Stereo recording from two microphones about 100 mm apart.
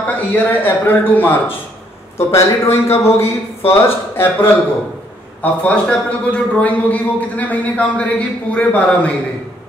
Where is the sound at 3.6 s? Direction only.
25° left (ahead or behind).